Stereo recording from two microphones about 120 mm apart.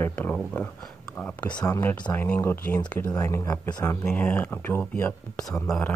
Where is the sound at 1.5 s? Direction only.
30° left (ahead or behind).